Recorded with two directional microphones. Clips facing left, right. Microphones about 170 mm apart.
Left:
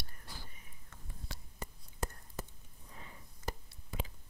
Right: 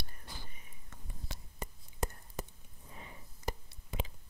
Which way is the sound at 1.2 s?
20° right (ahead or behind).